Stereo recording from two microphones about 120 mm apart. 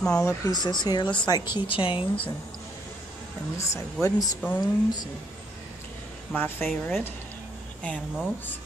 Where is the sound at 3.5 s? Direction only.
25° left (ahead or behind).